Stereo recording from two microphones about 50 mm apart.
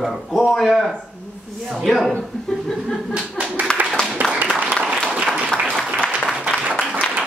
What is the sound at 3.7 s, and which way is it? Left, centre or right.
Speech, centre.